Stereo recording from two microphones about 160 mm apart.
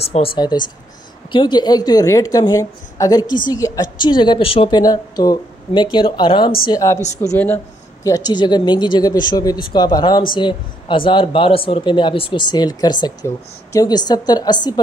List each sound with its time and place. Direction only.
0.0 s speech: 35° left (ahead or behind)